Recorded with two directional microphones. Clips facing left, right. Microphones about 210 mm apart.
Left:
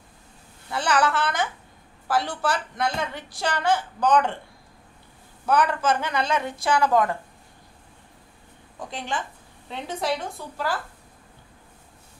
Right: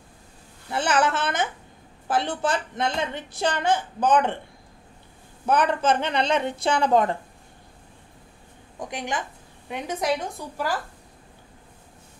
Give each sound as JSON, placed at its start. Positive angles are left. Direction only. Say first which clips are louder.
{"t": 0.7, "sound": "a woman's voice", "louder": "right 1 dB", "side_deg": -20}
{"t": 5.5, "sound": "a woman's voice", "louder": "right 1 dB", "side_deg": -20}
{"t": 8.7, "sound": "a woman's voice", "louder": "right 1 dB", "side_deg": -15}